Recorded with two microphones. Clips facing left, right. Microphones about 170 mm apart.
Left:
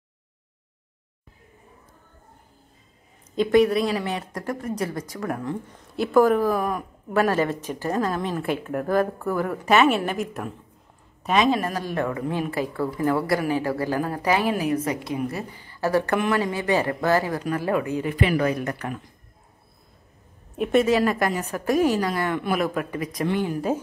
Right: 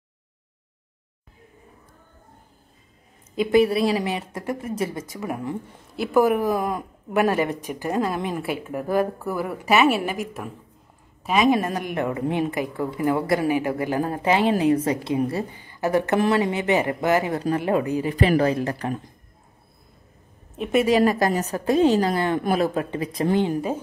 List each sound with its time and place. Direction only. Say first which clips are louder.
3.7 s a woman's voice: right 2 dB; 10° right (ahead or behind); by 15.6 s 30° right (ahead or behind)
15.6 s a woman's voice: left 1 dB; 20° right (ahead or behind)
18.0 s a woman's voice: right 4 dB; 35° right (ahead or behind)
20.5 s a woman's voice: left 1 dB; centre (ahead or behind)
21.0 s a woman's voice: right 3 dB; 25° right (ahead or behind)
21.3 s a woman's voice: right 2 dB; 40° right (ahead or behind)